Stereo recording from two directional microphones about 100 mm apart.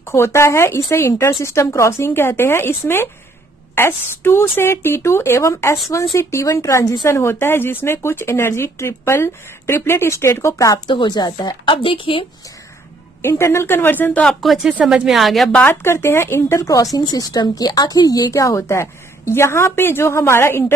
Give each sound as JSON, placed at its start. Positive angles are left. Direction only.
{"t": 0.0, "sound": "speech", "side_deg": 25}
{"t": 10.9, "sound": "speech", "side_deg": 45}
{"t": 11.7, "sound": "speech", "side_deg": 60}
{"t": 13.2, "sound": "speech", "side_deg": 25}
{"t": 14.2, "sound": "speech", "side_deg": 0}
{"t": 14.7, "sound": "speech", "side_deg": -10}
{"t": 15.5, "sound": "speech", "side_deg": 20}